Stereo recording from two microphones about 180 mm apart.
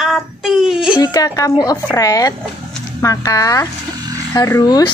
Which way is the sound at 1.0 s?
20° left (ahead or behind).